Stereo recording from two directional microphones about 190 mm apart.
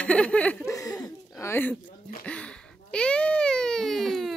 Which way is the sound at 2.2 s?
5° left (ahead or behind).